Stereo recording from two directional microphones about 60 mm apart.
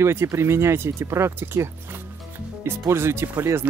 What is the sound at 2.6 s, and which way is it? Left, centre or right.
Speech, right.